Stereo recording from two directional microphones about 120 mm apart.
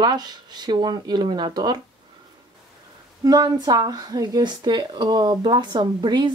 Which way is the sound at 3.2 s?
30° right (ahead or behind).